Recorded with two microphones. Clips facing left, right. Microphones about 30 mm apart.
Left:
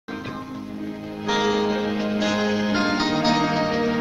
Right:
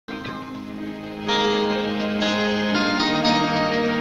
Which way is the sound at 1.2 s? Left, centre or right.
Right.